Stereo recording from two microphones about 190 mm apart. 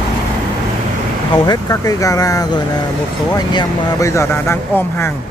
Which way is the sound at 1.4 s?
20° left (ahead or behind).